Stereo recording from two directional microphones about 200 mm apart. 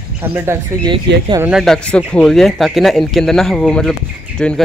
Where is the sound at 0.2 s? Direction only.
10° right (ahead or behind).